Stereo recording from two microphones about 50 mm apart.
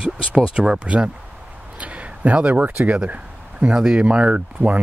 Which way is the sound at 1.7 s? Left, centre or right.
Right.